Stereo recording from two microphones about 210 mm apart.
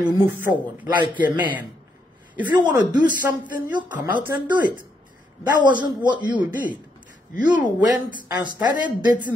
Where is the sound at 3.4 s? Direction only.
20° right (ahead or behind).